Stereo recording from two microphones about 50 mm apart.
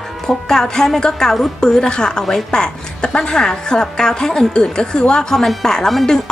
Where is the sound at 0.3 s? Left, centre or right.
Centre.